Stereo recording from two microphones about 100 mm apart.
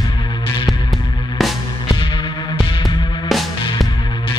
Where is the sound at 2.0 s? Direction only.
55° left (ahead or behind).